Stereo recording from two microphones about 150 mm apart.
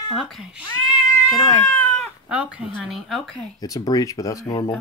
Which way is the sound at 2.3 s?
10° right (ahead or behind).